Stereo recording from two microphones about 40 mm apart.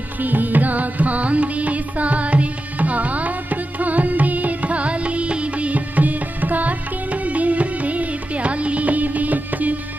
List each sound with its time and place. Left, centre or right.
0.2 s music: right